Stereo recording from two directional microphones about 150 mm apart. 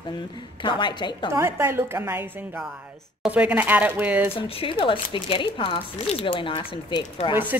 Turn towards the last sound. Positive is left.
turn(degrees=-10)  # may be behind; listen again after turning